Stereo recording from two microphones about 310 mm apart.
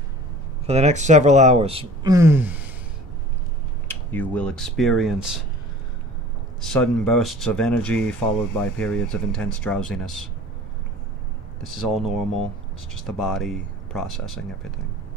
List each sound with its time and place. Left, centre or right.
0.7 s speech: right
3.8 s speech: centre
6.6 s speech: centre
11.6 s speech: centre